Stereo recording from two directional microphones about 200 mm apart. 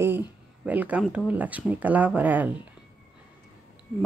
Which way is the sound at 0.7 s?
5° right (ahead or behind).